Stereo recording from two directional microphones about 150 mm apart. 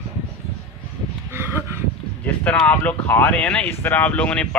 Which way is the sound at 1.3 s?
15° right (ahead or behind).